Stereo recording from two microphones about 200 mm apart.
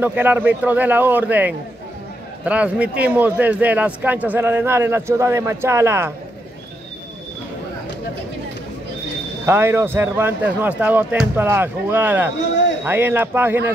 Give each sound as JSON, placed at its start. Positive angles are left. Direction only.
{"t": 0.0, "sound": "a man's voice", "side_deg": -10}
{"t": 9.5, "sound": "a man's voice", "side_deg": -10}